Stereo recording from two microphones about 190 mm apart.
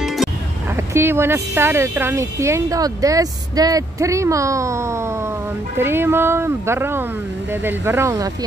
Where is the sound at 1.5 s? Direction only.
15° right (ahead or behind).